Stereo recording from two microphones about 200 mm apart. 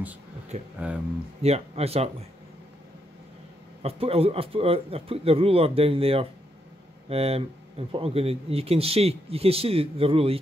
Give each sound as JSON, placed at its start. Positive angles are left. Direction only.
{"t": 0.7, "sound": "speech", "side_deg": -5}
{"t": 1.4, "sound": "speech", "side_deg": -30}
{"t": 3.8, "sound": "speech", "side_deg": -30}